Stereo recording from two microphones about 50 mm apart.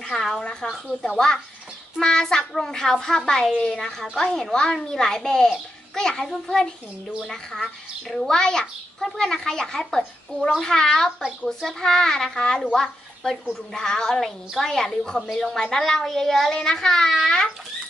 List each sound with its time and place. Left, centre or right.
0.0 s speech: centre
0.4 s a woman's voice: centre